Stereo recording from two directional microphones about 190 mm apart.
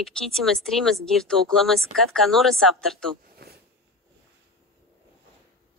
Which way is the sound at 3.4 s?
50° right (ahead or behind).